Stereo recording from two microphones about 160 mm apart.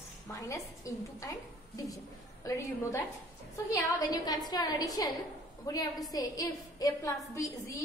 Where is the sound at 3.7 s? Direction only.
20° left (ahead or behind).